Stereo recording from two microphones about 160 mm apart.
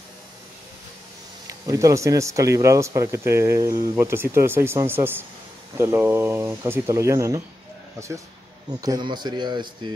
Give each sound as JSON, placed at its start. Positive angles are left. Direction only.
{"t": 1.5, "sound": "speech", "side_deg": -20}
{"t": 8.8, "sound": "speech", "side_deg": -25}